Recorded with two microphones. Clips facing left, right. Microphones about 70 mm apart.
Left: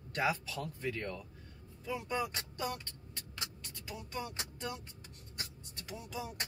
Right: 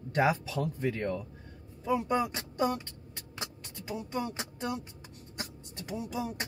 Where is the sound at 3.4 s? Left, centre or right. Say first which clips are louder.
Right 5 dB; right.